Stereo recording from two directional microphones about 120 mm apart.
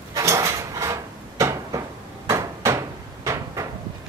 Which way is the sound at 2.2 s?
25° right (ahead or behind).